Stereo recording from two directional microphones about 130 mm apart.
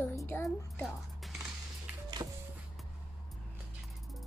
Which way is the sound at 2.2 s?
30° right (ahead or behind).